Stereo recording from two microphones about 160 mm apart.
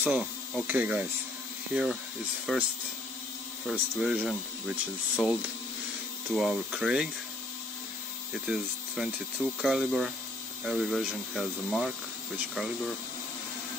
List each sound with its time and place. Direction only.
0.0 s speech: 10° right (ahead or behind)
4.0 s speech: 5° right (ahead or behind)
8.5 s speech: 5° right (ahead or behind)